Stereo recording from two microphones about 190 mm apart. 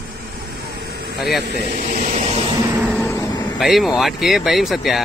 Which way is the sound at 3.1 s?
20° left (ahead or behind).